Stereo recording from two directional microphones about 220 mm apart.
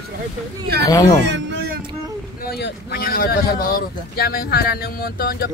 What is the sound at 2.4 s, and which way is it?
Speech, 45° left (ahead or behind).